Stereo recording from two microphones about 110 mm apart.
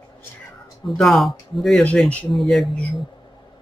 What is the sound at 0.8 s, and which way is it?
Speech, centre (ahead or behind).